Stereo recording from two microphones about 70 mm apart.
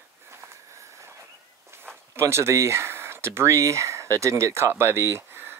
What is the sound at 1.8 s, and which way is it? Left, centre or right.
Speech, right.